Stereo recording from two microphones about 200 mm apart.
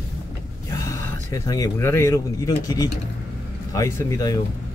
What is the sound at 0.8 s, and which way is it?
Speech, 15° left (ahead or behind).